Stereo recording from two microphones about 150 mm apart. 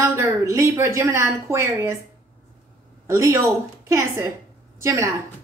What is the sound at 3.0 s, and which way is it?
Speech, 20° right (ahead or behind).